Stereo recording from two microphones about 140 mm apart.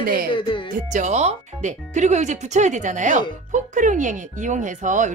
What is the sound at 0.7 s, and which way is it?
Speech, 60° right (ahead or behind).